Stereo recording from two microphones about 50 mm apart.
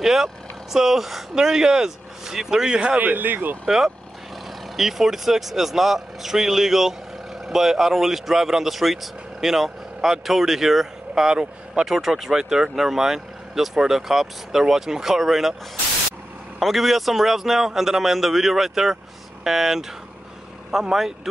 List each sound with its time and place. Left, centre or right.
0.0 s vehicle: centre
0.7 s speech: centre
3.0 s speech: right
3.6 s a man's voice: centre